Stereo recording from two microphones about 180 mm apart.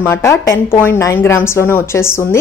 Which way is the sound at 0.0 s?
15° left (ahead or behind).